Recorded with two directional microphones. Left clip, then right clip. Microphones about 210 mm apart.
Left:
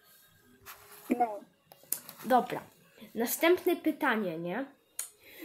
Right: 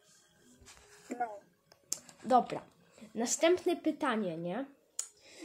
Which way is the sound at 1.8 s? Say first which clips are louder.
Left 2 dB; 5° right (ahead or behind).